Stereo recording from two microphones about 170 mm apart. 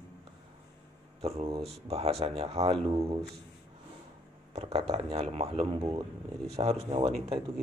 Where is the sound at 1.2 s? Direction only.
35° right (ahead or behind).